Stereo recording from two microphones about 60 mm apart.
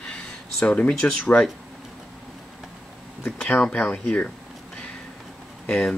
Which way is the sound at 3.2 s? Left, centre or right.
Centre.